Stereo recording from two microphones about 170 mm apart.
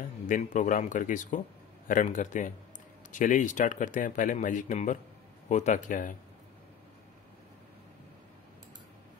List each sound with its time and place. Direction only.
0.3 s speech: 45° left (ahead or behind)